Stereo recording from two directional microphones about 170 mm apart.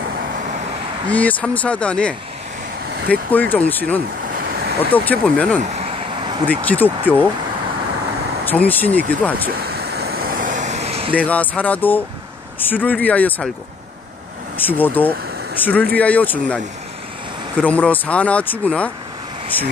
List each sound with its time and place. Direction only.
1.1 s speech: 10° left (ahead or behind)
4.3 s waves: 55° right (ahead or behind)
4.9 s speech: 10° left (ahead or behind)
5.6 s vehicle: 35° right (ahead or behind)
6.4 s speech: 10° left (ahead or behind)
8.5 s speech: 10° left (ahead or behind)
9.5 s vehicle: 65° right (ahead or behind); by 11.1 s 35° right (ahead or behind)
11.1 s speech: 10° left (ahead or behind)
14.7 s speech: 10° left (ahead or behind)
17.6 s speech: 10° left (ahead or behind)